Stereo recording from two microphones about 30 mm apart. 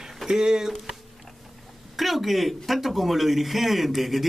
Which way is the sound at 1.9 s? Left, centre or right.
Centre.